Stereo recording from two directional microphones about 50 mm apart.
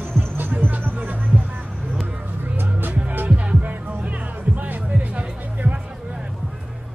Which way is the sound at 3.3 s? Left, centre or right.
Right.